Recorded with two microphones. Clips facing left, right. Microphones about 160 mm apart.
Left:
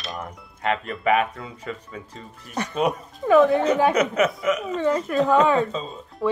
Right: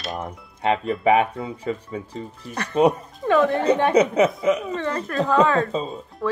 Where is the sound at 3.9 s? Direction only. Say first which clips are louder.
Right 4 dB; 30° right (ahead or behind).